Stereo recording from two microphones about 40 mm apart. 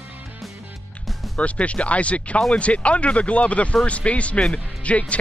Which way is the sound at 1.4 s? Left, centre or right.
Left.